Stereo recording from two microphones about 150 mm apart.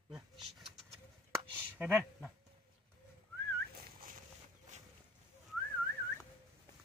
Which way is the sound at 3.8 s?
75° right (ahead or behind).